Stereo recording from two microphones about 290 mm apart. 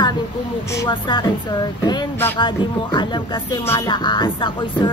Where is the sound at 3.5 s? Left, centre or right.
Centre.